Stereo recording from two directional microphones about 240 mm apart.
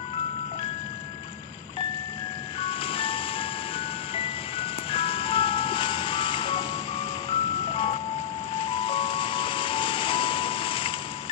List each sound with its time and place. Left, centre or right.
2.6 s music: left
7.2 s ice cream truck: left